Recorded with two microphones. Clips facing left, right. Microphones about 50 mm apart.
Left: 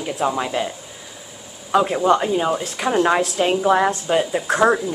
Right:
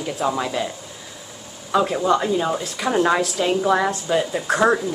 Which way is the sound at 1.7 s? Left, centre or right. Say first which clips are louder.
Left 2 dB; centre.